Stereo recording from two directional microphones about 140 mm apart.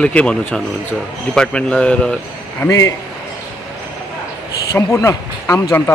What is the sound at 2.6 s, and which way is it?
Speech, 25° left (ahead or behind).